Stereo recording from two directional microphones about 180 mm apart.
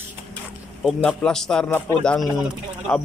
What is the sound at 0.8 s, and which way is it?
A man's voice, 5° left (ahead or behind).